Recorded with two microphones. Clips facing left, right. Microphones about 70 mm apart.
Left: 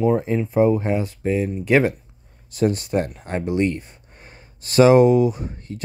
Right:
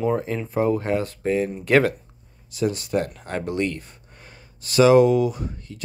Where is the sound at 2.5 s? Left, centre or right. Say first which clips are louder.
Left 3 dB; left.